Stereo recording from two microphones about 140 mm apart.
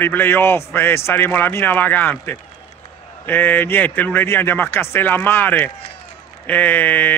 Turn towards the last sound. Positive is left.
turn(degrees=15)  # may be behind; listen again after turning